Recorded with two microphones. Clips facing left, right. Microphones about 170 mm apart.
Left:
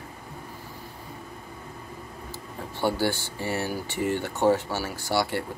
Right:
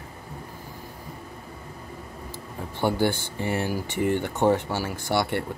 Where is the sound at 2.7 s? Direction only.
15° right (ahead or behind).